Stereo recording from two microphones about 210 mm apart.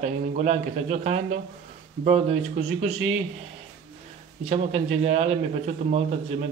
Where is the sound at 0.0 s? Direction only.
35° right (ahead or behind).